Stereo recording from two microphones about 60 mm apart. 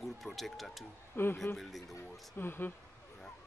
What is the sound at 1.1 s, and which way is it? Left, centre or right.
Speech, left.